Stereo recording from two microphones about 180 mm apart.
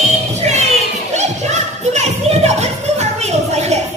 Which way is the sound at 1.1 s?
40° right (ahead or behind).